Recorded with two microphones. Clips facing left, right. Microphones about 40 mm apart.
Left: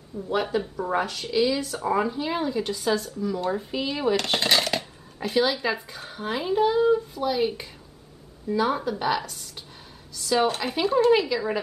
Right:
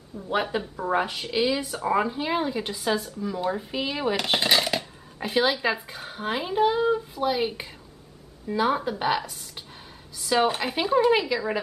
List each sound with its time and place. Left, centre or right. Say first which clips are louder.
0.3 s speech: left 1 dB; centre
5.3 s speech: even; centre